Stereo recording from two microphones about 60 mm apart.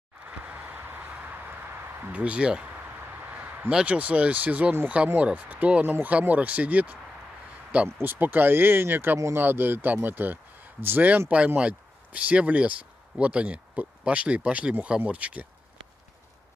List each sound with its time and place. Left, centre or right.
0.5 s a sound: right
2.1 s speech: centre
3.3 s a sound: right
3.8 s speech: right
8.0 s speech: right
11.2 s speech: right